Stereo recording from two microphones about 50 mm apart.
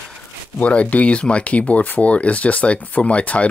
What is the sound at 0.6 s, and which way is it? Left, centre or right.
Speech, left.